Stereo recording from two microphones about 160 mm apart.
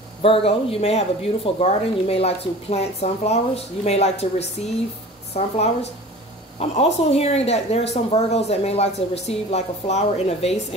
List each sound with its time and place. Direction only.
0.2 s a woman's voice: 35° left (ahead or behind)